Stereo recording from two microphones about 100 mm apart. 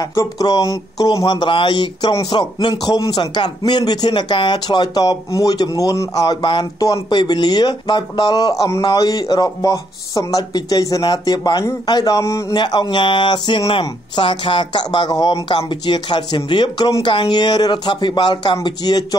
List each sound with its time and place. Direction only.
0.0 s speech: 35° left (ahead or behind)
6.4 s speech: 55° left (ahead or behind)
12.2 s a man's voice: 30° left (ahead or behind)
12.5 s speech: 45° left (ahead or behind)